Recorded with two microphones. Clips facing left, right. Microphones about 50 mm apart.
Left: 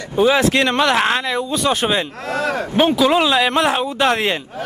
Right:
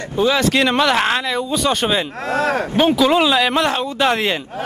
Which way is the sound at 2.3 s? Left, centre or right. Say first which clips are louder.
Right 2 dB; right.